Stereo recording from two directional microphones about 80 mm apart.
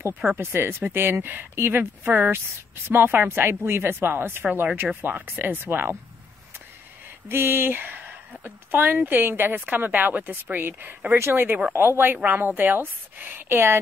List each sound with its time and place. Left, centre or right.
0.4 s speech: right
7.2 s speech: right